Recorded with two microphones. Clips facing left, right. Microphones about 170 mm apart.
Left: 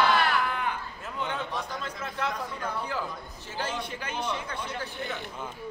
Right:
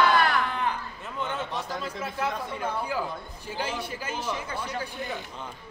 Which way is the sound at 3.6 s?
10° right (ahead or behind).